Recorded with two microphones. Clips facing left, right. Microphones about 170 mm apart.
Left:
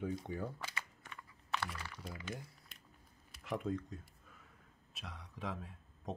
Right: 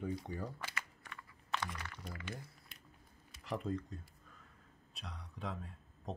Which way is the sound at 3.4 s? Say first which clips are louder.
Left 1 dB; centre (ahead or behind).